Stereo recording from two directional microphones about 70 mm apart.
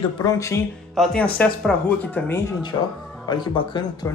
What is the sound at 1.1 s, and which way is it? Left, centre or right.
Speech, centre.